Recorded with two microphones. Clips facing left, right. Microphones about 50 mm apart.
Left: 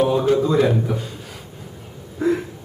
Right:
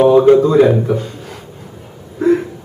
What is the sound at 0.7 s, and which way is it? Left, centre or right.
Speech, centre.